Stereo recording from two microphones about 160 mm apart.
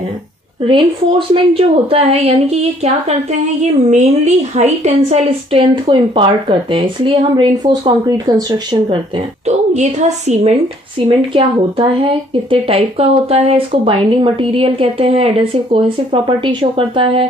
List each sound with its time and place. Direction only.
0.7 s speech: 30° right (ahead or behind)
3.9 s speech: 45° right (ahead or behind); by 8.9 s 25° right (ahead or behind)
9.5 s a woman's voice: 45° right (ahead or behind)